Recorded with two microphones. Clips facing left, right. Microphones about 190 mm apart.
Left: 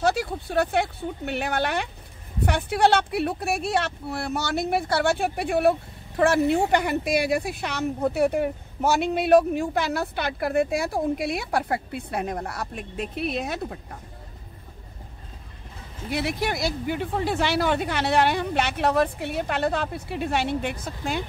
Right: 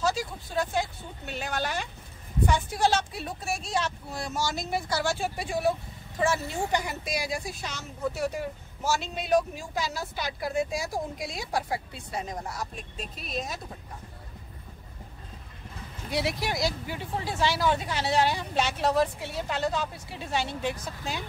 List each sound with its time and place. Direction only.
0.0 s a woman's voice: 60° left (ahead or behind)
16.1 s a woman's voice: 55° left (ahead or behind)